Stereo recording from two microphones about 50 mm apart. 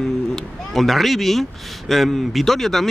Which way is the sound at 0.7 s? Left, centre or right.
Centre.